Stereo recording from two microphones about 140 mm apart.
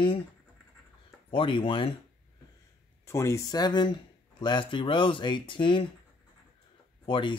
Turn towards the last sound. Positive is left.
turn(degrees=35)  # may be behind; listen again after turning